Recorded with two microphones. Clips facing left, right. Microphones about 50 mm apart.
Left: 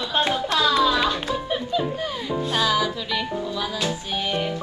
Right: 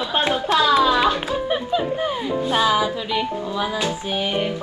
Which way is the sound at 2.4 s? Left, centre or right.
Centre.